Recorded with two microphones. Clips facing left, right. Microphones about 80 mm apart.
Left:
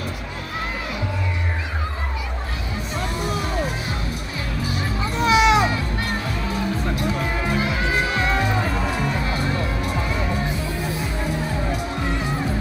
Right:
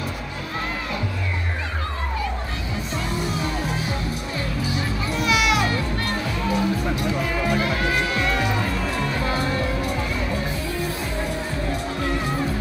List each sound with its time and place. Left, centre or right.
5.2 s music: left
7.5 s music: centre